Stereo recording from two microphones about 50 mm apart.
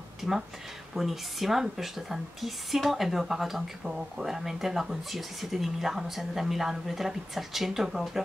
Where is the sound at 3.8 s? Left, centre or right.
Centre.